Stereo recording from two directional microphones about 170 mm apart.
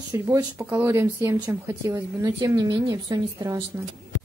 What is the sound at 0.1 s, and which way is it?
A woman's voice, 20° right (ahead or behind).